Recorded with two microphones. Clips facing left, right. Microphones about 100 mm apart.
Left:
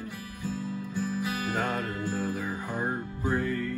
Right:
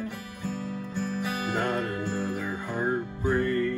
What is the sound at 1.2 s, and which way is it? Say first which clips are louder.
Music: right 2 dB; 20° right (ahead or behind).